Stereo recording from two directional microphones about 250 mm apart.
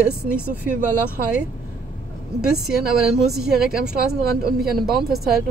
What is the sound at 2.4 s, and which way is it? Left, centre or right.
Speech, centre.